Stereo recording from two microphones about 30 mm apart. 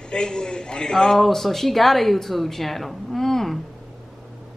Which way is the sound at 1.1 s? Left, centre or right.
Centre.